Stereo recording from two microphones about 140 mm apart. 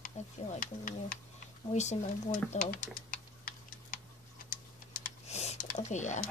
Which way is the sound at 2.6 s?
90° left.